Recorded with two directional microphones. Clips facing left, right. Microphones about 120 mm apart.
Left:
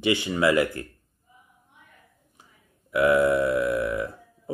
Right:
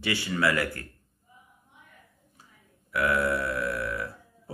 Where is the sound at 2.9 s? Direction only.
20° left (ahead or behind).